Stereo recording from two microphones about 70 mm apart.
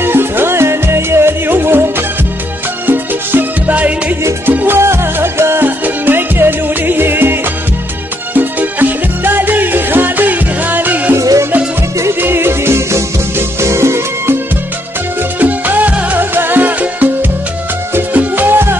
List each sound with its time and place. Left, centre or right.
0.0 s music: right
8.4 s music: right
11.1 s music: right
12.2 s music: right
15.3 s music: right